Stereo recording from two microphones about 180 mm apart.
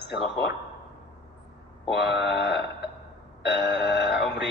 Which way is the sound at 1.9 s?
70° left (ahead or behind).